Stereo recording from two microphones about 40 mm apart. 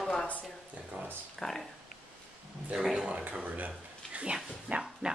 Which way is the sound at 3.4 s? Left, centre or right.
Right.